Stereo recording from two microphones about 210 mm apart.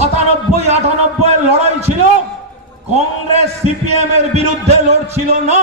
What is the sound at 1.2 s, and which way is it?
Speech, 30° right (ahead or behind).